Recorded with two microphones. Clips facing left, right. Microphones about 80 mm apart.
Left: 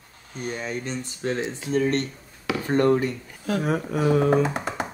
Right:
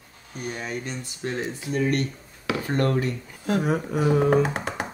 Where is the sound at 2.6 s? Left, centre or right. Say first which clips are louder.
Left 5 dB; left.